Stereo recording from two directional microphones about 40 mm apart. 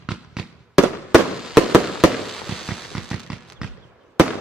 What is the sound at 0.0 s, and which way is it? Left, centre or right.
Fireworks, centre.